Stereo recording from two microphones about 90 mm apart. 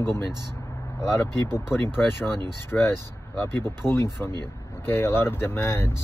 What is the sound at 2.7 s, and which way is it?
Speech, 15° left (ahead or behind).